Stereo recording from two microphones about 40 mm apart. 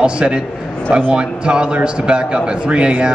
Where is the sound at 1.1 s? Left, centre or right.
Right.